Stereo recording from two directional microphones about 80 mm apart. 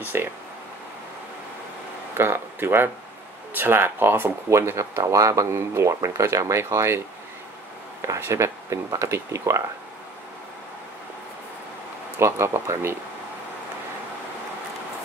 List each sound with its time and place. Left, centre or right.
0.1 s speech: right
2.1 s speech: right
8.0 s speech: right
12.2 s speech: right